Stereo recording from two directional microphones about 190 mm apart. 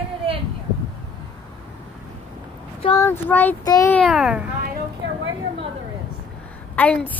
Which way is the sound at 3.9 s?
Centre (ahead or behind).